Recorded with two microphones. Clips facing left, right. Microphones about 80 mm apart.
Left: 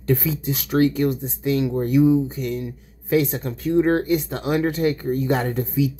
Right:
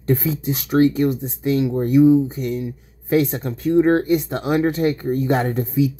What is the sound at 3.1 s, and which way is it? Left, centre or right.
Speech, right.